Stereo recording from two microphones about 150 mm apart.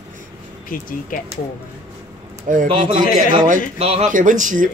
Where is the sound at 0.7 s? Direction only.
65° left (ahead or behind).